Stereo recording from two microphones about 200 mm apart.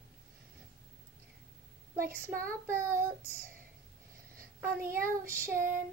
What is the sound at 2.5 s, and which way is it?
Child singing, 15° right (ahead or behind).